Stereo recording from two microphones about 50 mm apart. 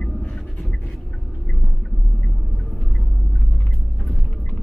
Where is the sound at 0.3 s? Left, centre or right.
Centre.